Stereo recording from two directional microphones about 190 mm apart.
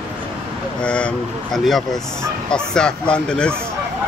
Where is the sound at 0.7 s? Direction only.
5° left (ahead or behind).